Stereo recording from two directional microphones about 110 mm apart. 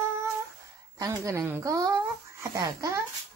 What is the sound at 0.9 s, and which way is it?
Speech, 30° right (ahead or behind).